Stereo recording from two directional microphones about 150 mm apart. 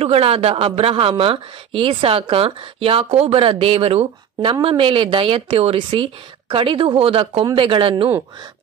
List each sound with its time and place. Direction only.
0.0 s speech: 40° right (ahead or behind)